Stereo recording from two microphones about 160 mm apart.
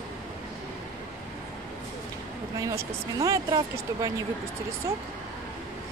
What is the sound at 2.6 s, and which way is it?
Speech, 20° right (ahead or behind).